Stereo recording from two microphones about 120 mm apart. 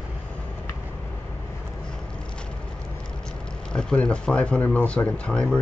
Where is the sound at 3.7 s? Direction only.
5° left (ahead or behind).